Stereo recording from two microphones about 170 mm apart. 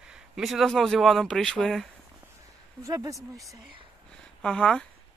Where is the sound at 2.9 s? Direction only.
20° right (ahead or behind).